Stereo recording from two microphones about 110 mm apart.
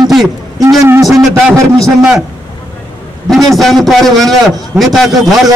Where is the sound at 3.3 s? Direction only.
Centre (ahead or behind).